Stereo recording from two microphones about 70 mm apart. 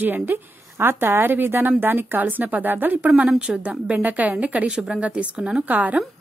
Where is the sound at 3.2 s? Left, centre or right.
Centre.